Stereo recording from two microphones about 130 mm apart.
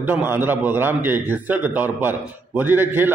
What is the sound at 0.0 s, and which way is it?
A man's voice, 15° right (ahead or behind).